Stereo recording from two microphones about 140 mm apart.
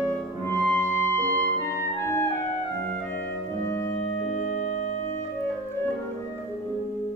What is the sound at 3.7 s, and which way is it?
Music, 20° left (ahead or behind).